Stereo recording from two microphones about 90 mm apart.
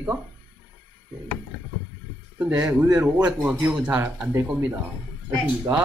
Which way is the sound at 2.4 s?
15° right (ahead or behind).